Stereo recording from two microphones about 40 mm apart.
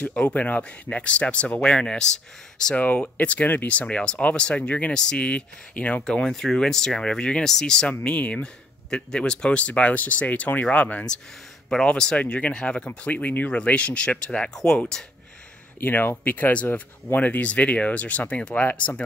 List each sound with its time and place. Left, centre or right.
0.0 s speech: left
1.6 s speech: left
2.7 s speech: left
3.0 s speech: left
3.8 s speech: left
4.9 s speech: centre
5.2 s speech: left
6.1 s speech: left
8.0 s speech: left
8.9 s speech: left
9.6 s speech: left
11.8 s speech: left
14.5 s speech: centre
15.8 s speech: left